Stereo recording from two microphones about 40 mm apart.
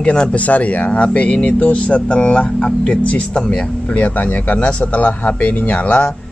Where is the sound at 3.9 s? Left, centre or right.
Left.